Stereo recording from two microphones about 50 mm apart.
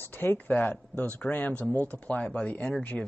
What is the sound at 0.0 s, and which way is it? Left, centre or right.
Speech, left.